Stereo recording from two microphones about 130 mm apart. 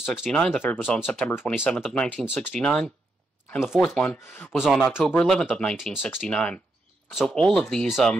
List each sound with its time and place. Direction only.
0.0 s speech: 5° right (ahead or behind)
0.6 s speech: 15° left (ahead or behind)
1.0 s speech: 5° left (ahead or behind)
1.3 s speech: 15° left (ahead or behind)
1.8 s speech: centre (ahead or behind)
4.5 s speech: centre (ahead or behind)